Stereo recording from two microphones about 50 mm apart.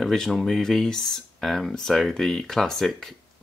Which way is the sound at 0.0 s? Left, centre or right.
Centre.